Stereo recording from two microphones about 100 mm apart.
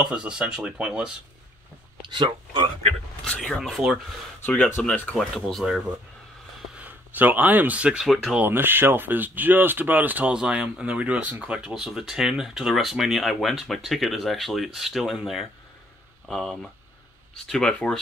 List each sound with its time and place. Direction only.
0.1 s speech: 10° right (ahead or behind)
2.1 s speech: 55° right (ahead or behind)
3.3 s speech: 5° left (ahead or behind)
4.5 s speech: 20° left (ahead or behind)
5.1 s speech: centre (ahead or behind)
6.8 s speech: 20° right (ahead or behind)
8.0 s speech: centre (ahead or behind)
8.4 s speech: 20° right (ahead or behind); by 17.9 s 10° left (ahead or behind)